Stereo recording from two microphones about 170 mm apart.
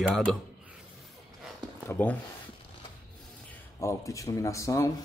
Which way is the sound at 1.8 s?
10° left (ahead or behind).